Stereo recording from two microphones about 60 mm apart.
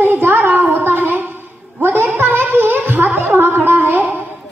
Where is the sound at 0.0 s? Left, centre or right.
Right.